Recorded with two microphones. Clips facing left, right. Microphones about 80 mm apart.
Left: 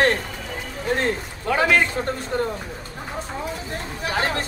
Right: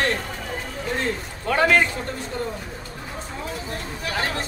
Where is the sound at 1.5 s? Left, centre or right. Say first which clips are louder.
Even; centre.